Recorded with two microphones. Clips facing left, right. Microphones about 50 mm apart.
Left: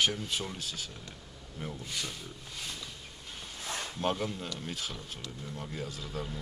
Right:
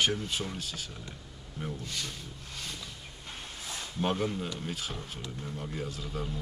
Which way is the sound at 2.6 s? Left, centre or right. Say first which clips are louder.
Even; centre.